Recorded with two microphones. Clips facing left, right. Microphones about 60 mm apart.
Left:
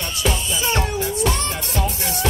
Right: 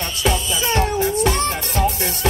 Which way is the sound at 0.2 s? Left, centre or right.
Right.